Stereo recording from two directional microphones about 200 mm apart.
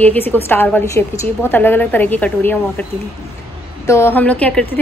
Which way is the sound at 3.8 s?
15° left (ahead or behind).